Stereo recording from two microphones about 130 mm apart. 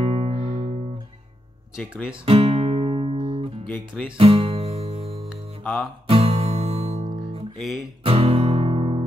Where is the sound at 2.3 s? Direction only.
45° right (ahead or behind).